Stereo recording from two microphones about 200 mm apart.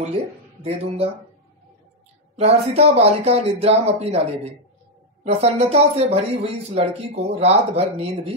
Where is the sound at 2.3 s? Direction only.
30° right (ahead or behind).